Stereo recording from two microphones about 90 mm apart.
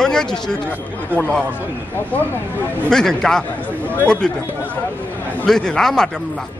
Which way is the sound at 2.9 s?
5° left (ahead or behind).